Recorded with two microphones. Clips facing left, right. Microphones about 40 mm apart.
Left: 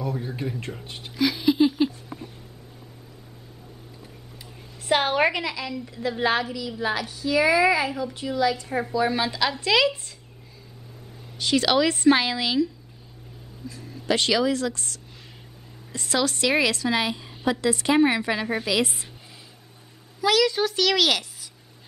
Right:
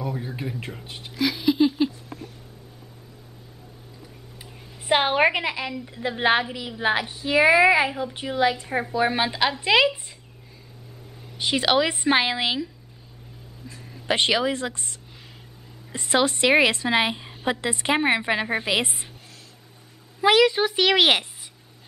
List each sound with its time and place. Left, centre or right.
0.0 s a sound: centre
4.8 s a woman's voice: right
11.3 s a woman's voice: right
13.7 s a sound: right
13.9 s a woman's voice: right
20.2 s a woman's voice: right